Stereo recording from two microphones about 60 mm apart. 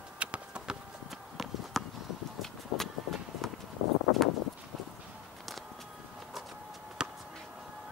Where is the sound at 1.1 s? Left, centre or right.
Centre.